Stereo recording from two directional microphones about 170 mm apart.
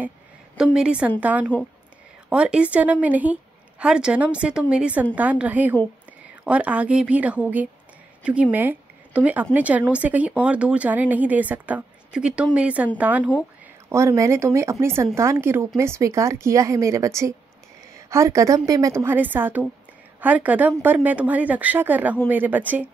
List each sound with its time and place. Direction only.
0.7 s a woman's voice: 5° right (ahead or behind)